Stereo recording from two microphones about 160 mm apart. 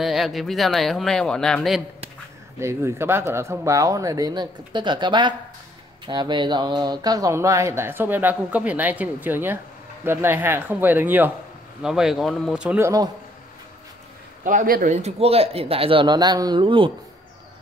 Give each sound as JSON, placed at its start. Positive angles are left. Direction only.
{"t": 0.0, "sound": "speech", "side_deg": 0}
{"t": 2.6, "sound": "speech", "side_deg": -15}
{"t": 14.4, "sound": "a man's voice", "side_deg": -55}